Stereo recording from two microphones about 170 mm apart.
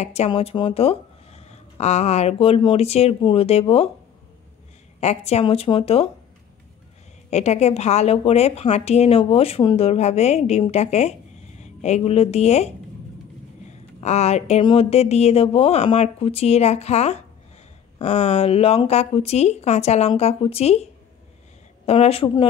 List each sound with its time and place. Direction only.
0.0 s a woman's voice: 40° left (ahead or behind)
5.0 s a woman's voice: 40° left (ahead or behind)
7.2 s a woman's voice: 40° left (ahead or behind)
13.7 s a sound: 40° left (ahead or behind)
14.6 s a woman's voice: 30° left (ahead or behind)
21.8 s a woman's voice: 35° left (ahead or behind)